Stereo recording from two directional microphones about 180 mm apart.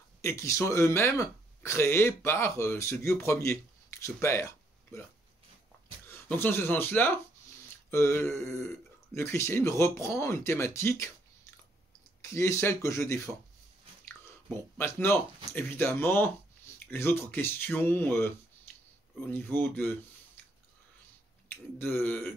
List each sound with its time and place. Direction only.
0.2 s speech: 15° left (ahead or behind)
6.0 s speech: 10° left (ahead or behind)
12.2 s speech: 15° left (ahead or behind)
14.8 s speech: 10° left (ahead or behind)
19.3 s speech: 10° left (ahead or behind)
21.5 s speech: 10° left (ahead or behind)